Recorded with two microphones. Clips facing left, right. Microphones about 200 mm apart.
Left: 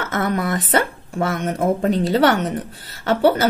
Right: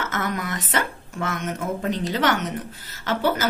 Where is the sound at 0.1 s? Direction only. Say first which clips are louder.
Left 6 dB; 35° left (ahead or behind).